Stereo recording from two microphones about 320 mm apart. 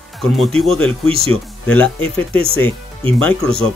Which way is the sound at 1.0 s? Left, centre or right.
Centre.